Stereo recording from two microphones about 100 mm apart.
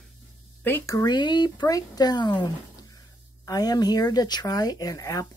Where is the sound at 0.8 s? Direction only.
40° left (ahead or behind).